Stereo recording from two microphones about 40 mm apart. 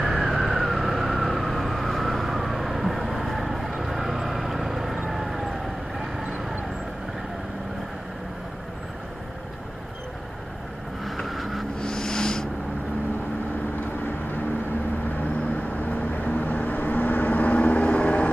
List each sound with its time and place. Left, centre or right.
0.0 s vehicle: centre
11.1 s vehicle: centre
11.8 s a sound: centre
15.5 s vehicle: left